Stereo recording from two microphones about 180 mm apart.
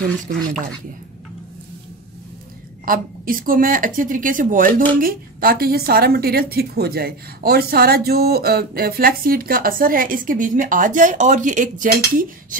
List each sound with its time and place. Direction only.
0.3 s a woman's voice: 55° right (ahead or behind)
2.8 s a woman's voice: 50° right (ahead or behind)